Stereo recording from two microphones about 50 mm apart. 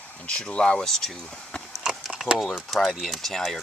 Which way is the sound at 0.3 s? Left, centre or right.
Centre.